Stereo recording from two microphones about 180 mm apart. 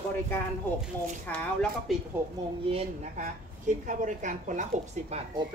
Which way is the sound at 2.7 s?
35° right (ahead or behind).